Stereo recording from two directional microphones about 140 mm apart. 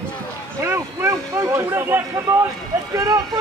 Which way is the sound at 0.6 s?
20° right (ahead or behind).